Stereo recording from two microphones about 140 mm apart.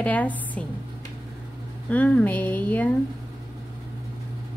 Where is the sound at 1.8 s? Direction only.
10° left (ahead or behind).